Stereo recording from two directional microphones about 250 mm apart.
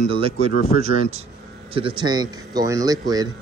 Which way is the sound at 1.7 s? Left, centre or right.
Right.